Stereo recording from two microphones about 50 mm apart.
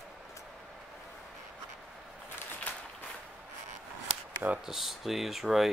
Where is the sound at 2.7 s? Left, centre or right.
Left.